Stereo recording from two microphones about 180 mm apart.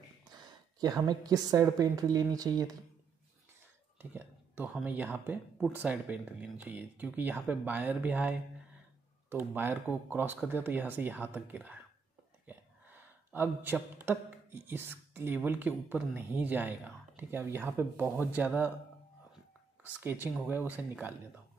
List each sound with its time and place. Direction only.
0.2 s a woman's voice: 20° right (ahead or behind)
4.0 s a sound: 10° right (ahead or behind)
4.7 s speech: 10° right (ahead or behind)
19.8 s speech: 10° right (ahead or behind)